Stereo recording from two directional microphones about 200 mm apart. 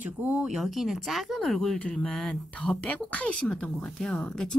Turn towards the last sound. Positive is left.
turn(degrees=5)  # may be behind; listen again after turning